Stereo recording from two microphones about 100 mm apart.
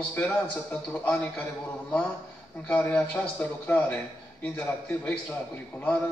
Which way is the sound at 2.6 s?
15° left (ahead or behind).